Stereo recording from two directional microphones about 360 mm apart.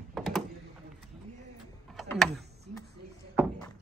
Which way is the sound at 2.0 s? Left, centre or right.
Centre.